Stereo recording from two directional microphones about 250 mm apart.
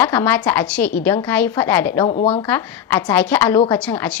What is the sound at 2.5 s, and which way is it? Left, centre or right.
A woman's voice, centre.